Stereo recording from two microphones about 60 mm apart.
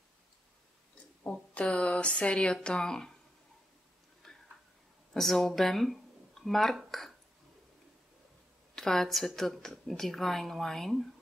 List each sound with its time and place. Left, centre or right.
1.2 s speech: left
4.2 s tick-tock: centre
5.1 s speech: centre
8.7 s speech: centre